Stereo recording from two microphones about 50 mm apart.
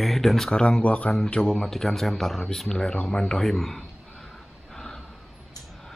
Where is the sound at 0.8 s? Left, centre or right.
Left.